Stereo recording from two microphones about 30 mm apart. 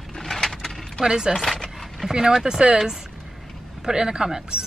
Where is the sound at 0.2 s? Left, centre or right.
Centre.